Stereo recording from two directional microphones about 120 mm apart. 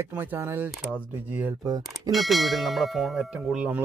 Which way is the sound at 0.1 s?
15° right (ahead or behind).